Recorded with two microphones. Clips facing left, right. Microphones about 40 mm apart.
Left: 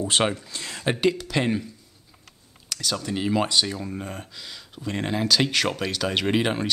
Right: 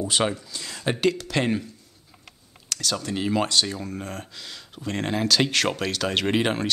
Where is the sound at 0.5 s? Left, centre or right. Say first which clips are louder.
Left 1 dB; left.